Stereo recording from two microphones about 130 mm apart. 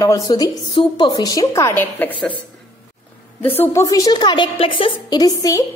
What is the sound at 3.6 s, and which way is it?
A woman's voice, 25° left (ahead or behind).